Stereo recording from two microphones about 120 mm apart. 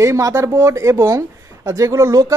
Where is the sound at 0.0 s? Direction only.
25° right (ahead or behind).